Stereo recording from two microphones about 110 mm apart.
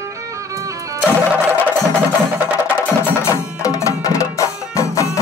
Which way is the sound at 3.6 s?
30° left (ahead or behind).